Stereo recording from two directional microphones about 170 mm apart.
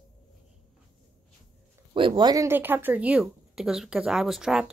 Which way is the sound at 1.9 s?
30° right (ahead or behind).